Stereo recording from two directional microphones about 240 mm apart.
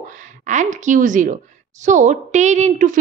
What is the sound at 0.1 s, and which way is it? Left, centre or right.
A woman's voice, right.